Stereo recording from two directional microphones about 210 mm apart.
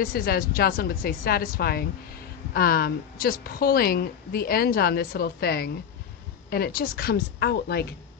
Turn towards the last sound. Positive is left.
turn(degrees=50)  # may be behind; listen again after turning